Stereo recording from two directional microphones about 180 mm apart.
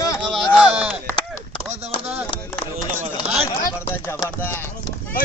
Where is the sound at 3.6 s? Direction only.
15° left (ahead or behind).